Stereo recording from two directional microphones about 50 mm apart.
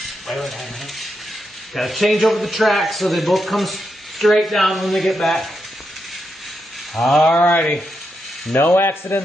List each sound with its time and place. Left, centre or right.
0.3 s speech: centre
7.0 s speech: centre
7.3 s rub: left
8.5 s speech: left